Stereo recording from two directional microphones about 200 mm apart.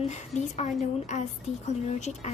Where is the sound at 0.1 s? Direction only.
35° left (ahead or behind).